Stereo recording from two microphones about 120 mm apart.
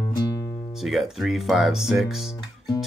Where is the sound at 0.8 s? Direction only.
Centre (ahead or behind).